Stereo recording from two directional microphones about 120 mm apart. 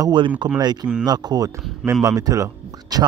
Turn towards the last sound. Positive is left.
turn(degrees=-30)  # may be behind; listen again after turning